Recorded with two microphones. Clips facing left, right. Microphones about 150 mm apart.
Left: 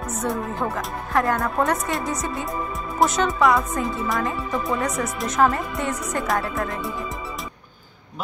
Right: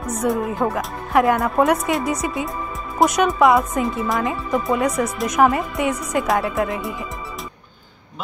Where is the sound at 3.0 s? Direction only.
Centre (ahead or behind).